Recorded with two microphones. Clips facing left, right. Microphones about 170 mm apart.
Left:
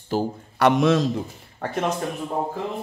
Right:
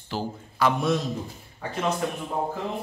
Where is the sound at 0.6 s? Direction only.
90° left.